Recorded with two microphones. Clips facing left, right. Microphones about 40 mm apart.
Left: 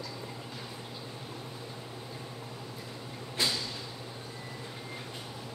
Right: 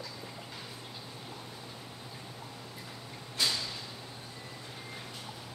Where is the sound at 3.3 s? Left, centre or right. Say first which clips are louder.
Left 1 dB; centre.